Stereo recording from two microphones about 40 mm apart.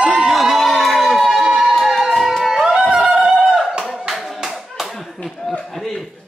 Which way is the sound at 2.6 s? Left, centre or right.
Centre.